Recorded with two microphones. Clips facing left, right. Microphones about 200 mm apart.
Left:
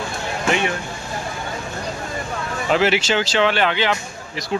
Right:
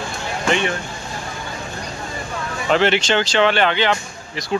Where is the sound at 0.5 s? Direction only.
5° left (ahead or behind).